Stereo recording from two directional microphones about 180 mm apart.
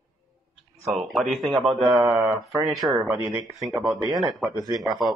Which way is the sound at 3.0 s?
10° right (ahead or behind).